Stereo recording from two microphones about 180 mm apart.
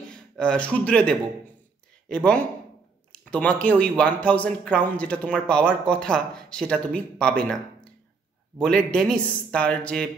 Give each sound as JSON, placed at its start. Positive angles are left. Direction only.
{"t": 0.1, "sound": "speech", "side_deg": 5}